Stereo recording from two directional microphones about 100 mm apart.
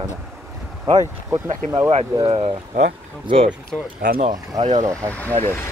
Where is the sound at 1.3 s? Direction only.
30° right (ahead or behind).